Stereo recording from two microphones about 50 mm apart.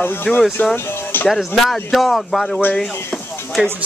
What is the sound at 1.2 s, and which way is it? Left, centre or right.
Speech, centre.